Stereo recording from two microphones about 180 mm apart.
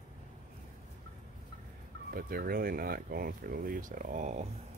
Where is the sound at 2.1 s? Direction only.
55° right (ahead or behind).